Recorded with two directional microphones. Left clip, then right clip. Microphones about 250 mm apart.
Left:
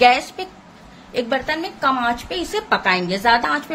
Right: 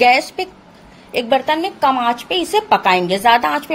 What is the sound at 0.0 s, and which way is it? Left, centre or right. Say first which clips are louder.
A woman's voice: right 2 dB; right.